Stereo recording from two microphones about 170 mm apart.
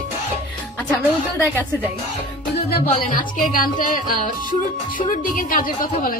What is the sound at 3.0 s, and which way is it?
A woman's voice, 55° left (ahead or behind).